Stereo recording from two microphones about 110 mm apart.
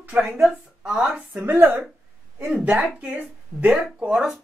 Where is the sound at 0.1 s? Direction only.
5° right (ahead or behind).